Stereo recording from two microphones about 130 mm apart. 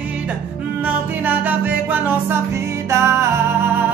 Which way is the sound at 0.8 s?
15° right (ahead or behind).